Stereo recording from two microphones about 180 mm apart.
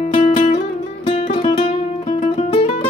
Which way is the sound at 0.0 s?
35° left (ahead or behind).